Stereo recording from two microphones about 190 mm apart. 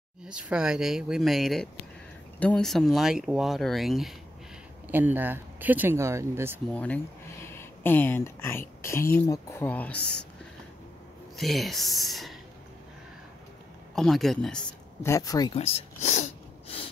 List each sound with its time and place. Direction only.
0.2 s speech: 5° right (ahead or behind)
6.7 s speech: 5° left (ahead or behind)
11.3 s speech: centre (ahead or behind)
13.9 s speech: centre (ahead or behind)
15.0 s speech: 15° left (ahead or behind)
15.5 s a sound: 30° left (ahead or behind)